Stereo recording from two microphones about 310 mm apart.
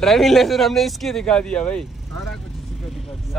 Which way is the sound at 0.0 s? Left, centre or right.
Centre.